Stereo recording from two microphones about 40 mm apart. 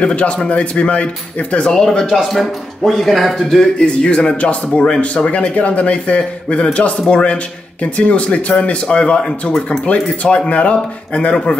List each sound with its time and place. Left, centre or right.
0.0 s speech: left
1.7 s speech: centre
2.0 s speech: centre
3.7 s speech: left